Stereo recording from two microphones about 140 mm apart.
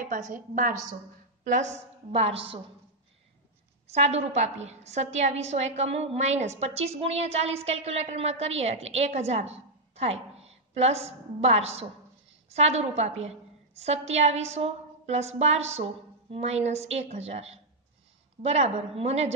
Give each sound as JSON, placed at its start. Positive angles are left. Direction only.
{"t": 0.0, "sound": "a woman's voice", "side_deg": -70}
{"t": 1.4, "sound": "a woman's voice", "side_deg": -60}
{"t": 3.9, "sound": "a woman's voice", "side_deg": -50}